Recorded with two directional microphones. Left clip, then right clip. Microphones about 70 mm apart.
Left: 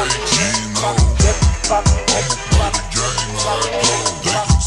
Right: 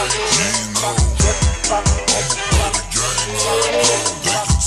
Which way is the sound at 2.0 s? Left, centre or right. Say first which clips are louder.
Even; right.